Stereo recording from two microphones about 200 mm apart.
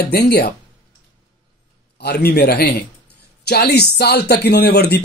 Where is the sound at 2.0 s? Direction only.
55° left (ahead or behind).